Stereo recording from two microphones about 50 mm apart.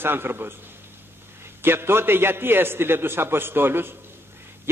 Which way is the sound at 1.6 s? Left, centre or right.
Right.